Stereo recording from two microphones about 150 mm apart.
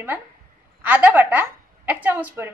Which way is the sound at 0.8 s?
10° right (ahead or behind).